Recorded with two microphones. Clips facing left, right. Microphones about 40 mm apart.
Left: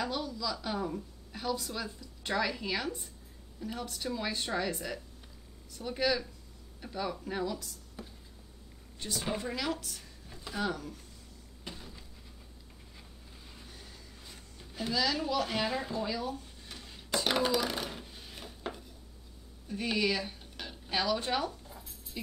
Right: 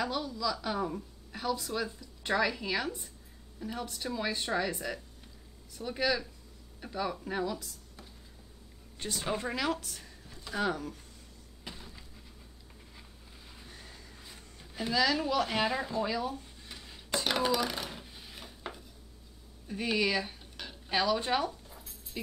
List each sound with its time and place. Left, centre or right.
0.0 s a woman's voice: centre
9.0 s speech: right
9.4 s speech: centre
11.6 s vehicle: centre
13.6 s vehicle: centre
14.3 s a sound: centre
19.7 s speech: centre